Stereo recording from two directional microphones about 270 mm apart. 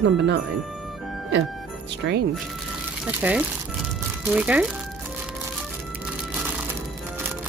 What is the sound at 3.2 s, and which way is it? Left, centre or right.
Speech, centre.